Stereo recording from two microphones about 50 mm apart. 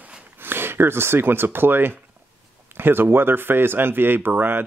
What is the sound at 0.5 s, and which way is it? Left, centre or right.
Speech, right.